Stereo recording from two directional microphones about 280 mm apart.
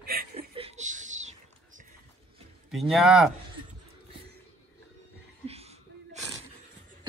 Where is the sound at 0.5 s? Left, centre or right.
Right.